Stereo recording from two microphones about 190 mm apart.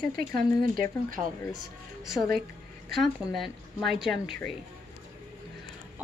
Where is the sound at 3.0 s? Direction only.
Centre (ahead or behind).